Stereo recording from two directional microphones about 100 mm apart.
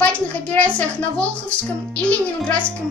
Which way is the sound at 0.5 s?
10° left (ahead or behind).